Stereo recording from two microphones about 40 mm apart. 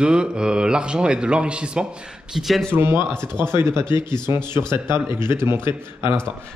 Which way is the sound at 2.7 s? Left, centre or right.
Right.